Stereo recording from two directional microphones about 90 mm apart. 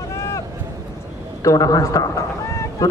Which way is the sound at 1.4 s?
40° left (ahead or behind).